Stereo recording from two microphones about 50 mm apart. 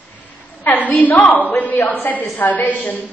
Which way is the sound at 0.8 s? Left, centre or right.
Left.